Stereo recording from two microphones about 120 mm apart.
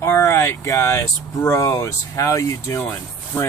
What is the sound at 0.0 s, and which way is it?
Speech, 20° left (ahead or behind).